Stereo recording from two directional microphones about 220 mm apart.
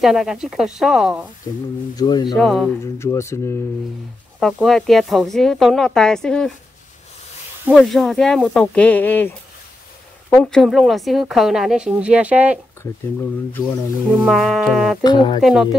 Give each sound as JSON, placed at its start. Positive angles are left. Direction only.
{"t": 0.0, "sound": "speech", "side_deg": 0}
{"t": 2.0, "sound": "speech", "side_deg": 20}
{"t": 2.3, "sound": "speech", "side_deg": 0}
{"t": 3.0, "sound": "speech", "side_deg": 15}
{"t": 4.4, "sound": "speech", "side_deg": 0}
{"t": 7.7, "sound": "speech", "side_deg": 0}
{"t": 14.2, "sound": "speech", "side_deg": 0}
{"t": 15.0, "sound": "speech", "side_deg": 20}
{"t": 15.4, "sound": "speech", "side_deg": -5}